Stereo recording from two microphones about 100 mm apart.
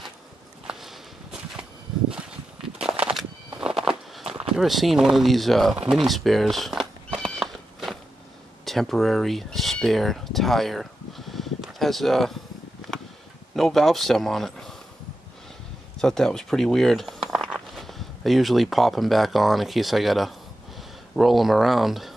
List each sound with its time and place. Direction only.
0.7 s a sound: 5° right (ahead or behind)
3.5 s a sound: 5° right (ahead or behind)
4.6 s speech: centre (ahead or behind)
7.2 s cat: centre (ahead or behind)
8.6 s speech: centre (ahead or behind)
13.6 s a man's voice: centre (ahead or behind)
16.0 s speech: 5° left (ahead or behind)